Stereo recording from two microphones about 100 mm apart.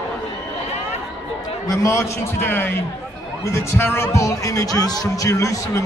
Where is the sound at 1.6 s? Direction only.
30° left (ahead or behind).